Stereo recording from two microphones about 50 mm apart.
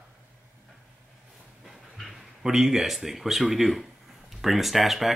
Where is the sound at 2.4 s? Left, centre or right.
Centre.